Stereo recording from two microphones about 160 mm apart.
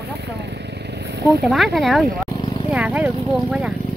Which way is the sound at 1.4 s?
Centre (ahead or behind).